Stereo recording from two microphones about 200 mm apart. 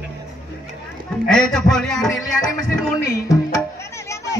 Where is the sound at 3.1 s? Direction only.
15° left (ahead or behind).